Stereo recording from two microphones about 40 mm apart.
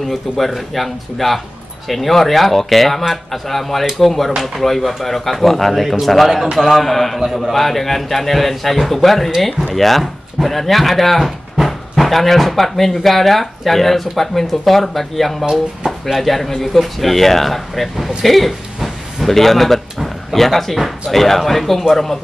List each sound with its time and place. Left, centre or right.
0.1 s a man's voice: centre
6.7 s speech: centre
15.4 s speech: centre
16.2 s speech: centre